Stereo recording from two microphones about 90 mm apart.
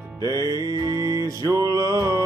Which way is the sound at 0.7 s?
40° right (ahead or behind).